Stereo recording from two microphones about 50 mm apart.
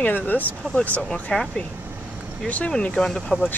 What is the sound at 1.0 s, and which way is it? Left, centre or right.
Speech, left.